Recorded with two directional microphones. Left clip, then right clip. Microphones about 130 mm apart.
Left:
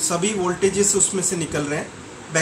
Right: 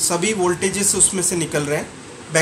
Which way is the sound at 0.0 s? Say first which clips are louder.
Right 3 dB; 90° right.